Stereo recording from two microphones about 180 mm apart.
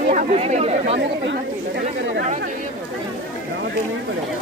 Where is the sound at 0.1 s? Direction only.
40° right (ahead or behind).